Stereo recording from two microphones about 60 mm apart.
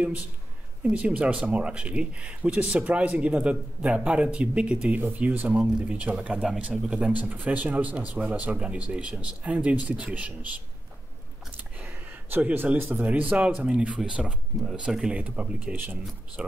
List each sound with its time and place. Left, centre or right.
0.8 s speech: right
11.5 s a sound: right
13.0 s speech: right; by 15.1 s centre
15.1 s speech: right